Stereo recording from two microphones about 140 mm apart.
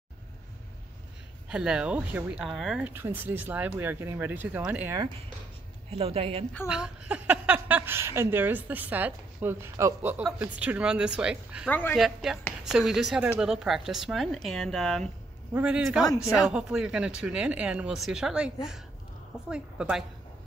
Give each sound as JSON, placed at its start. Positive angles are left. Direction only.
{"t": 1.5, "sound": "speech", "side_deg": -5}
{"t": 5.9, "sound": "a woman's voice", "side_deg": -45}
{"t": 6.7, "sound": "speech", "side_deg": -5}
{"t": 11.7, "sound": "speech", "side_deg": 15}
{"t": 12.0, "sound": "a woman's voice", "side_deg": 0}